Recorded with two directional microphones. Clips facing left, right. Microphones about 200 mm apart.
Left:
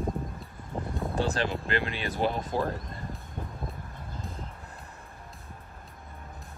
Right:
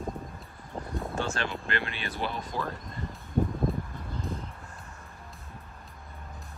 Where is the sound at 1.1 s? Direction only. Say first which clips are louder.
Left 4 dB; 35° left (ahead or behind).